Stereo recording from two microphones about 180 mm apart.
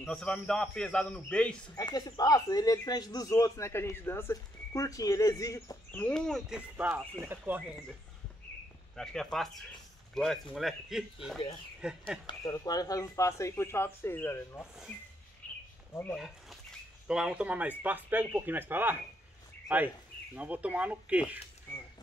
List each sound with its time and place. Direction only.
0.0 s a man's voice: 5° left (ahead or behind)
1.8 s speech: 20° left (ahead or behind); by 6.6 s centre (ahead or behind)
6.8 s speech: 10° right (ahead or behind)
8.9 s a man's voice: 5° left (ahead or behind)
12.3 s speech: 20° left (ahead or behind)
15.9 s speech: 10° left (ahead or behind)
17.1 s speech: 5° right (ahead or behind)